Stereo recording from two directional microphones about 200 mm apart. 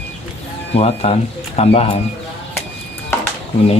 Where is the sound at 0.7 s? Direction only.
30° left (ahead or behind).